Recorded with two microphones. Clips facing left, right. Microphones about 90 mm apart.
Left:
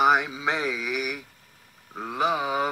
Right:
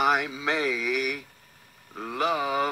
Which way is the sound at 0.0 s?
Centre (ahead or behind).